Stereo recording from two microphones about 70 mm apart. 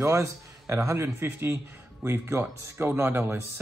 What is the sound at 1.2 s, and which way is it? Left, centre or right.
Speech, right.